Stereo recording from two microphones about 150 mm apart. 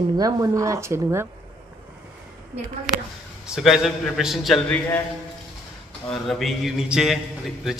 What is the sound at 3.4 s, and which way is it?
A man's voice, 5° right (ahead or behind).